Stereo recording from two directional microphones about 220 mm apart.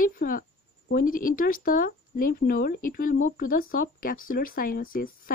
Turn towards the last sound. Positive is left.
turn(degrees=40)  # may be behind; listen again after turning